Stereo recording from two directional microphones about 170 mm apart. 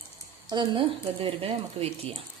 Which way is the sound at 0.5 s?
30° right (ahead or behind).